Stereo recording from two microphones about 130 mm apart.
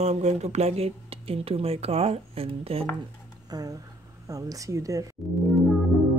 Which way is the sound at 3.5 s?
30° right (ahead or behind).